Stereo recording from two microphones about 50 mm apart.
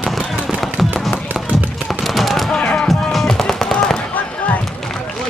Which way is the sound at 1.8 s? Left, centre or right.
Centre.